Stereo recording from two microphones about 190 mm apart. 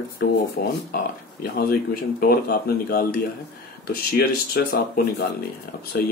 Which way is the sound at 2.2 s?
50° left (ahead or behind).